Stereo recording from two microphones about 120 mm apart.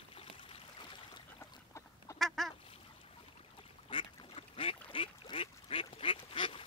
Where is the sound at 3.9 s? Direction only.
50° left (ahead or behind).